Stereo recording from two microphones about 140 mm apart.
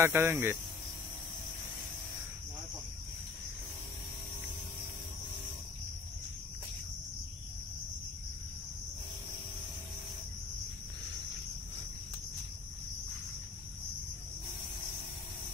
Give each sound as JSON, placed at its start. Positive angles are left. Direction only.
{"t": 0.0, "sound": "speech", "side_deg": -15}